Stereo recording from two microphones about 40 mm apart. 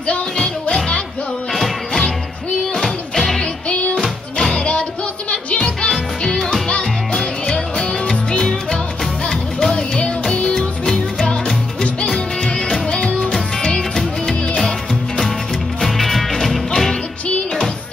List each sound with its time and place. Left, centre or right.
0.0 s music: left
2.8 s music: centre
3.6 s music: left
5.3 s music: left; by 8.5 s centre
9.7 s music: left
13.7 s music: centre
15.8 s music: centre